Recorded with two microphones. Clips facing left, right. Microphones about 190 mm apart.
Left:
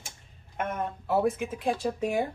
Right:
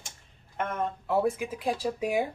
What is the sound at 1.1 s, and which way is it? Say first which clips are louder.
Speech: left 1 dB; centre (ahead or behind).